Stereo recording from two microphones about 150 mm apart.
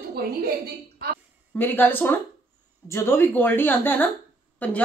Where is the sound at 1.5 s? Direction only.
15° left (ahead or behind).